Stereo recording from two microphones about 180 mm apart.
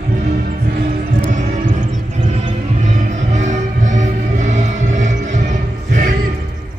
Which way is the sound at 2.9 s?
45° right (ahead or behind).